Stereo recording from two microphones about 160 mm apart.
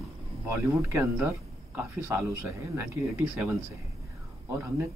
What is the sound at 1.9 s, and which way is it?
A man's voice, 15° right (ahead or behind).